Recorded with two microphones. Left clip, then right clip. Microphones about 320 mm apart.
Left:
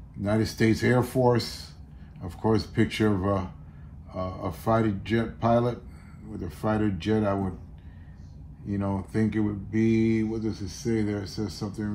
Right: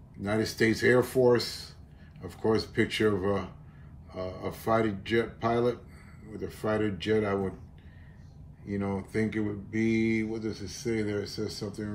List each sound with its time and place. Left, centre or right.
0.2 s speech: centre
8.6 s speech: centre